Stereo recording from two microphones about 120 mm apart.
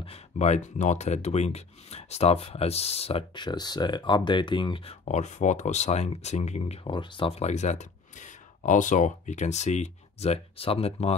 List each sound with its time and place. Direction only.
0.0 s speech: 60° left (ahead or behind)
3.3 s speech: 35° left (ahead or behind)
5.0 s speech: 75° left (ahead or behind)
6.8 s speech: 45° left (ahead or behind); by 11.1 s 60° left (ahead or behind)